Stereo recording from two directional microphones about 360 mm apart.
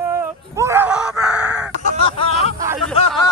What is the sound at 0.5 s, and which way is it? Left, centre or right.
Screaming, centre.